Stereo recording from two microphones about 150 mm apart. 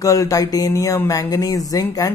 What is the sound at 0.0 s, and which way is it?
Speech, 25° left (ahead or behind).